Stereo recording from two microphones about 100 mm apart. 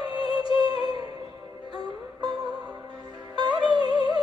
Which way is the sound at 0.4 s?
45° right (ahead or behind).